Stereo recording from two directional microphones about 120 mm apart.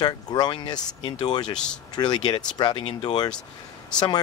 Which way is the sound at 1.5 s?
5° left (ahead or behind).